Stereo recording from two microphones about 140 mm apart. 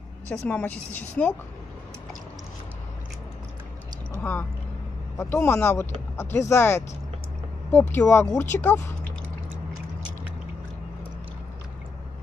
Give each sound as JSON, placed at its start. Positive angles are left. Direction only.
{"t": 0.3, "sound": "speech", "side_deg": 10}
{"t": 4.2, "sound": "speech", "side_deg": 15}